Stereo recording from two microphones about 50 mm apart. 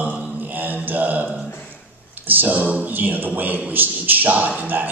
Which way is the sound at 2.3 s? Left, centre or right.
Right.